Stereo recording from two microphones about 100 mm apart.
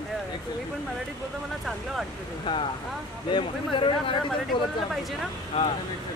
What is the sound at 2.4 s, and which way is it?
Speech, 65° left (ahead or behind).